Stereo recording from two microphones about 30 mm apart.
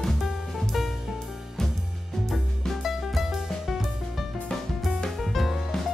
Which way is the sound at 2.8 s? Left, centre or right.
Centre.